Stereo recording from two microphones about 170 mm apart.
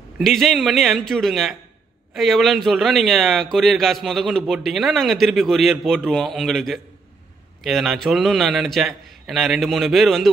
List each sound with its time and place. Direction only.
0.2 s a man's voice: centre (ahead or behind)